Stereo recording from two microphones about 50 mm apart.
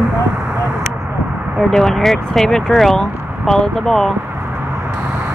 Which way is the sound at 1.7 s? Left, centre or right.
Centre.